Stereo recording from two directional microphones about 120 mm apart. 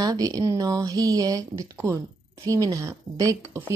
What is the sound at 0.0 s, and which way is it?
Speech, 30° right (ahead or behind).